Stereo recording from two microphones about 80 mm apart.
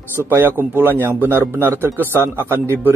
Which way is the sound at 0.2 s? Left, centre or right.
Right.